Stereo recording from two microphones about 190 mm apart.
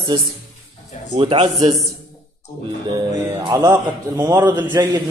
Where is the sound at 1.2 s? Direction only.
30° right (ahead or behind).